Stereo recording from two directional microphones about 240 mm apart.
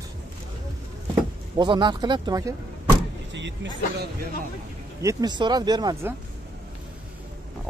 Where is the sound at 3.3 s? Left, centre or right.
Right.